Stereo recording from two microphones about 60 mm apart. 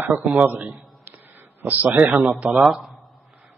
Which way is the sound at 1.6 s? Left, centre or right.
Right.